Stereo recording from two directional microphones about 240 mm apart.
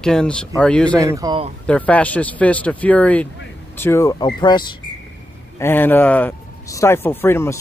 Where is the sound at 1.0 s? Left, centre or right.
Centre.